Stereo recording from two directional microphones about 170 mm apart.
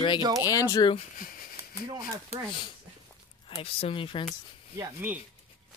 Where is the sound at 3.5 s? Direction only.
35° left (ahead or behind).